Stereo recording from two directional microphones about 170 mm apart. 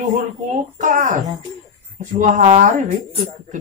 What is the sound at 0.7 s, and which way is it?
A woman's voice, 50° right (ahead or behind).